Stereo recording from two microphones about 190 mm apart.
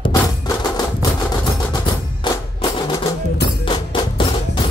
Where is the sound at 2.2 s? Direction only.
25° left (ahead or behind).